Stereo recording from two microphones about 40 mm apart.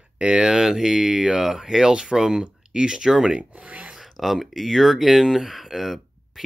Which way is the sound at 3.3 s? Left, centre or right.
Right.